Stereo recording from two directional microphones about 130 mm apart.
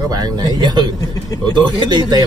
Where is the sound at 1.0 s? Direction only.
30° left (ahead or behind).